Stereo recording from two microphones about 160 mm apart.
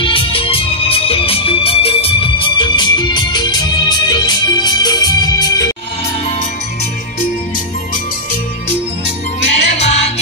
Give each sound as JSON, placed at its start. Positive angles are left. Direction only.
{"t": 0.0, "sound": "music", "side_deg": 35}
{"t": 9.7, "sound": "music", "side_deg": 40}